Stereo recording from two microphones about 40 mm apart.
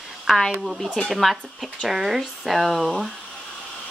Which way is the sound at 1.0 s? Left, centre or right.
Centre.